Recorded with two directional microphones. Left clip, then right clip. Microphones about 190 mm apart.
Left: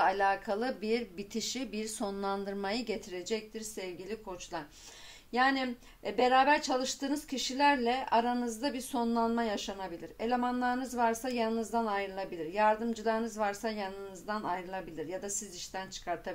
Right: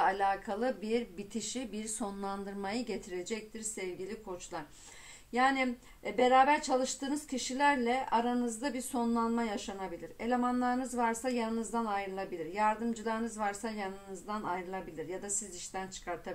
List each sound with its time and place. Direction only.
0.0 s speech: 30° left (ahead or behind)
5.3 s a woman's voice: 30° left (ahead or behind)